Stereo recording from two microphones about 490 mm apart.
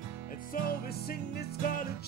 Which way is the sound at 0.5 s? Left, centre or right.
Centre.